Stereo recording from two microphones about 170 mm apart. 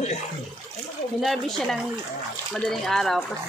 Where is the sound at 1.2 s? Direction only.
Centre (ahead or behind).